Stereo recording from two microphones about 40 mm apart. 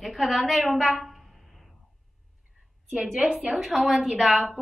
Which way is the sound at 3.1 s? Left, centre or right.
Centre.